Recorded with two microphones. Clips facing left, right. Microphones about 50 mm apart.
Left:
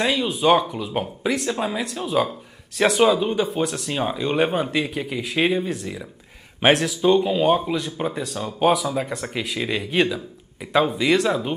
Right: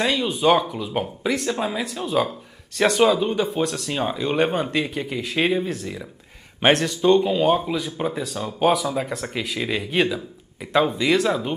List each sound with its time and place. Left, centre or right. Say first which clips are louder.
0.0 s speech: even; centre